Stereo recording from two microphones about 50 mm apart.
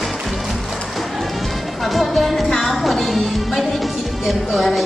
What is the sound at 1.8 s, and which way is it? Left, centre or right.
Music, centre.